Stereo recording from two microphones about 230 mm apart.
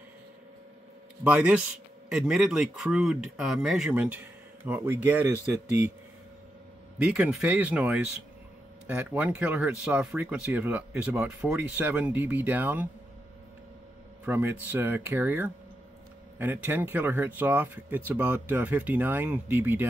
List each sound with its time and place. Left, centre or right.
1.2 s speech: centre
7.0 s speech: centre
14.2 s speech: centre